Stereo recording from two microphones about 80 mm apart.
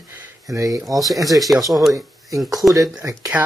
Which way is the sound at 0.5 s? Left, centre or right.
Right.